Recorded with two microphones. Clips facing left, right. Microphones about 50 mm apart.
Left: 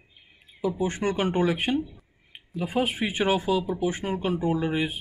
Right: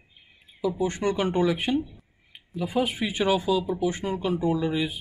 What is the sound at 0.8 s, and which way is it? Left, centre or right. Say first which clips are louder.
Speech: right 1 dB; left.